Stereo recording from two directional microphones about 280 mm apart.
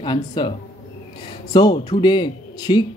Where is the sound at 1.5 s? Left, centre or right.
Centre.